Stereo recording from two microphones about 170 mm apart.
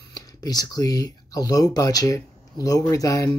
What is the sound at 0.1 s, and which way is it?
Speech, 20° left (ahead or behind).